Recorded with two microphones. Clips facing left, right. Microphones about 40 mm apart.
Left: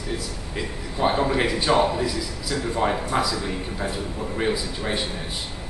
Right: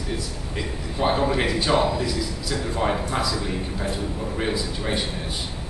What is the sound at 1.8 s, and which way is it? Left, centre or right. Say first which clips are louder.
Speech: left 1 dB; centre.